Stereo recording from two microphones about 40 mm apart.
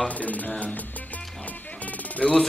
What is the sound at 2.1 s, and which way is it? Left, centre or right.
Speech, left.